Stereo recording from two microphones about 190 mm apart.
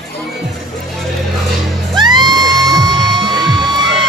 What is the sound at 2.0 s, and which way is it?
Music, 25° right (ahead or behind).